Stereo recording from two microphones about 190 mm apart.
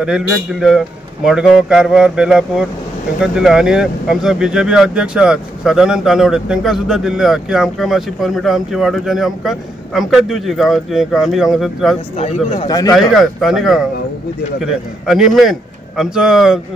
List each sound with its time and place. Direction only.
0.0 s speech: centre (ahead or behind)
12.2 s speech: 30° left (ahead or behind)
12.9 s speech: centre (ahead or behind)